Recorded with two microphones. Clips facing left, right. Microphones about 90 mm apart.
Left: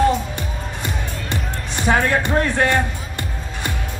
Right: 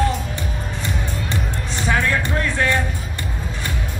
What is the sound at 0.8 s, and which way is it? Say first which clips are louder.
Music: right 2 dB; 15° left (ahead or behind).